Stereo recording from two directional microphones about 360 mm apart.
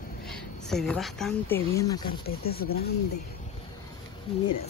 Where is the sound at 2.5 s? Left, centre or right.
Left.